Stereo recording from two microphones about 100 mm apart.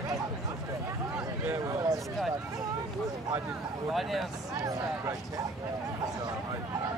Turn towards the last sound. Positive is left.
turn(degrees=-30)  # may be behind; listen again after turning